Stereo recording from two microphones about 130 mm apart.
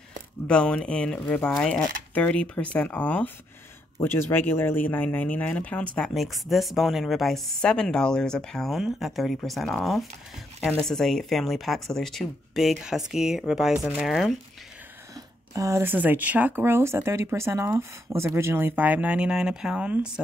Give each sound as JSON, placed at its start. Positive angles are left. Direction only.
{"t": 0.5, "sound": "a woman's voice", "side_deg": 10}
{"t": 15.5, "sound": "speech", "side_deg": -25}